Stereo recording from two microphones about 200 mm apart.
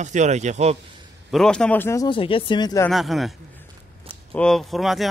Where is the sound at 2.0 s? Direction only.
25° left (ahead or behind).